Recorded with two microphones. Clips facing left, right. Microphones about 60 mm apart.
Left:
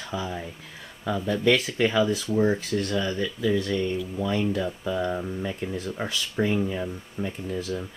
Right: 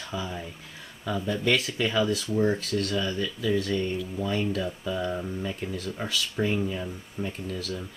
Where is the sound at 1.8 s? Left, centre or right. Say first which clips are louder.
Left 3 dB; centre.